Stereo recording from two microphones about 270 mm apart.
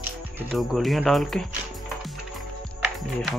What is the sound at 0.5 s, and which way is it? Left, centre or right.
Speech, centre.